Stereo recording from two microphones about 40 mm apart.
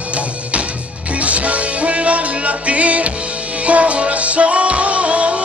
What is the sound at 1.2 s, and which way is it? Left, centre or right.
Music, right.